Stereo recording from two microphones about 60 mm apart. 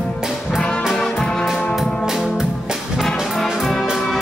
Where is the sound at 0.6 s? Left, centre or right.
Centre.